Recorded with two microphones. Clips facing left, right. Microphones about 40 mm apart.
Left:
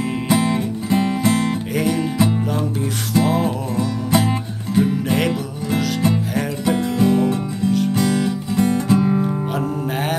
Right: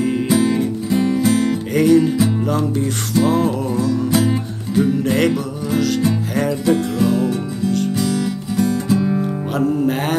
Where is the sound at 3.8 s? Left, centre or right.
Left.